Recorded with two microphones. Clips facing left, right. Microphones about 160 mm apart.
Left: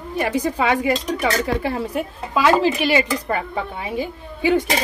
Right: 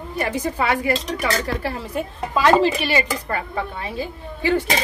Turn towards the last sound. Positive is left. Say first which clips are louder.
# left 2 dB
turn(degrees=15)  # may be behind; listen again after turning